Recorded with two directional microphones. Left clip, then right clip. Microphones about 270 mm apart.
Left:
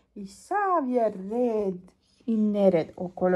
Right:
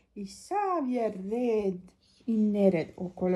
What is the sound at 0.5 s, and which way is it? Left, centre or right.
Speech, left.